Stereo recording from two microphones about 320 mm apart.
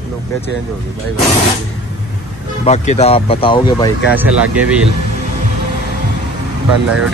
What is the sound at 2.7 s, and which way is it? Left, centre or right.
Speech, centre.